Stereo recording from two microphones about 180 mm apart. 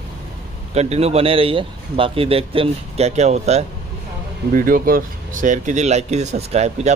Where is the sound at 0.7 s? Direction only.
35° right (ahead or behind).